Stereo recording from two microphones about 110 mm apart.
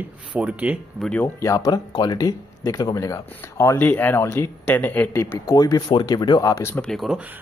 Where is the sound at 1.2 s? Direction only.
25° left (ahead or behind).